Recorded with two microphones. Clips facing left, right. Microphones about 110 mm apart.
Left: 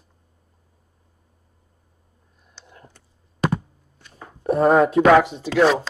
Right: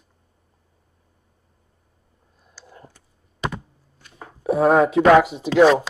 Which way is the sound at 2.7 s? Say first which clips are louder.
Right 3 dB; 15° right (ahead or behind).